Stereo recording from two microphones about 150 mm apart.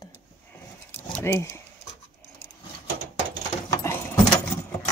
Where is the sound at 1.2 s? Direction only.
15° left (ahead or behind).